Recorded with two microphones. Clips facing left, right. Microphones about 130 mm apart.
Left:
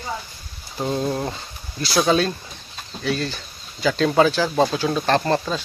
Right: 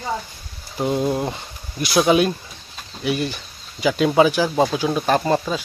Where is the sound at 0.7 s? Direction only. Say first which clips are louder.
Right 3 dB; 15° right (ahead or behind).